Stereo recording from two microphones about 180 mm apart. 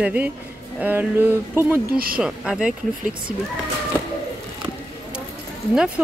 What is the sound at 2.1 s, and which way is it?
Speech, 5° right (ahead or behind).